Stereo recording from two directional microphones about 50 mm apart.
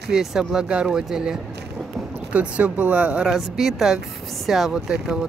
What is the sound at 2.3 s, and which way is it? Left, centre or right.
Speech, right.